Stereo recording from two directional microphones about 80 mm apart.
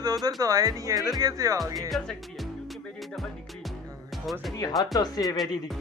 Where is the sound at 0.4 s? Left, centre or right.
Right.